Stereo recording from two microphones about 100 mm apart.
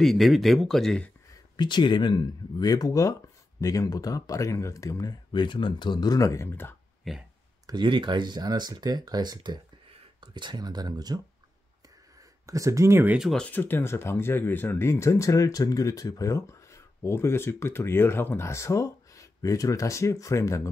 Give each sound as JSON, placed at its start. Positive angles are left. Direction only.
{"t": 0.0, "sound": "speech", "side_deg": 0}
{"t": 1.3, "sound": "speech", "side_deg": 50}
{"t": 5.3, "sound": "speech", "side_deg": 50}
{"t": 7.0, "sound": "speech", "side_deg": 0}
{"t": 7.6, "sound": "speech", "side_deg": -50}
{"t": 12.4, "sound": "speech", "side_deg": -30}
{"t": 13.2, "sound": "speech", "side_deg": 5}
{"t": 13.5, "sound": "speech", "side_deg": 20}